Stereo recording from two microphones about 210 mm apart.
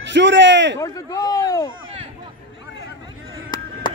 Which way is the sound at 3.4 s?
20° left (ahead or behind).